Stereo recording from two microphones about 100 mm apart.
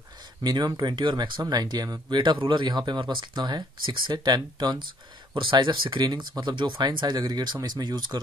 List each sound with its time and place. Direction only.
0.4 s speech: 45° right (ahead or behind)
5.3 s speech: 55° right (ahead or behind)